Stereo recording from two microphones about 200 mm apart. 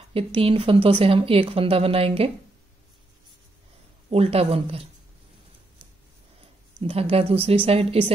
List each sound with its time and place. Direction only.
0.1 s speech: 25° right (ahead or behind)
4.1 s speech: 30° right (ahead or behind)
6.8 s speech: 30° right (ahead or behind)